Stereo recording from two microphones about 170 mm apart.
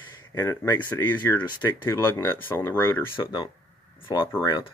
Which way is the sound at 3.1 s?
30° left (ahead or behind).